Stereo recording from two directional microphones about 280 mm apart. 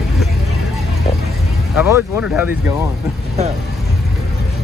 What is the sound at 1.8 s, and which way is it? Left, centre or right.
Speech, centre.